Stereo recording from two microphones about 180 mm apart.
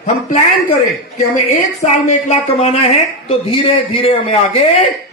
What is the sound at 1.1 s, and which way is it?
A woman's voice, 45° left (ahead or behind).